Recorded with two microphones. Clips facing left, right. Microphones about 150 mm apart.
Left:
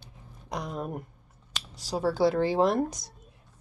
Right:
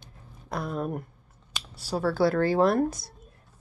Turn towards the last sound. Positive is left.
turn(degrees=15)  # may be behind; listen again after turning